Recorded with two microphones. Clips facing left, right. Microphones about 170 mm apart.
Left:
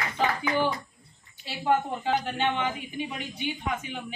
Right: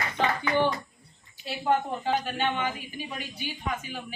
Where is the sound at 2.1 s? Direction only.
20° left (ahead or behind).